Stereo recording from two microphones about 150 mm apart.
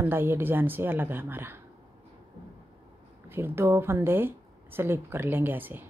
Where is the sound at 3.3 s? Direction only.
15° right (ahead or behind).